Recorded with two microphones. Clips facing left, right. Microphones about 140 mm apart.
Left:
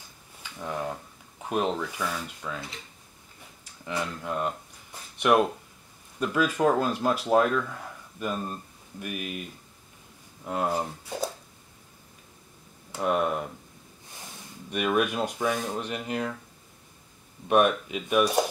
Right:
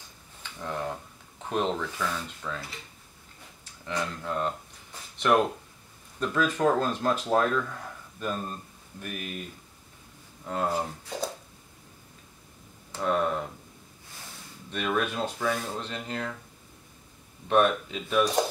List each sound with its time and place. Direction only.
0.4 s a sound: 10° left (ahead or behind)
1.5 s speech: 10° left (ahead or behind)
3.8 s speech: 10° left (ahead or behind)
5.1 s a sound: 10° left (ahead or behind)
6.1 s speech: 10° left (ahead or behind)
10.4 s speech: 10° left (ahead or behind)
12.9 s speech: 15° left (ahead or behind)
14.7 s speech: 15° left (ahead or behind)
17.5 s speech: 10° left (ahead or behind)